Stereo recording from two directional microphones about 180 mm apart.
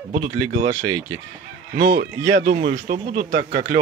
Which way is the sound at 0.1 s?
45° right (ahead or behind).